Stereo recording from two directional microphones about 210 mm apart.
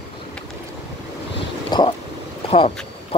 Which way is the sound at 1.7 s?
20° left (ahead or behind).